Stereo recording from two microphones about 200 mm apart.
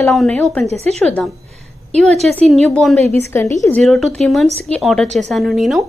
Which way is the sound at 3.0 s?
35° right (ahead or behind).